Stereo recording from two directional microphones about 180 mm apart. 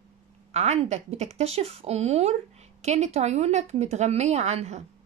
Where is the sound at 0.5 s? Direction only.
35° right (ahead or behind).